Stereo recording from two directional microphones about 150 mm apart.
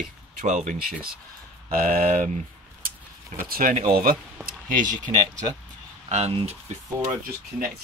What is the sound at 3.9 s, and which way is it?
Speech, 85° right.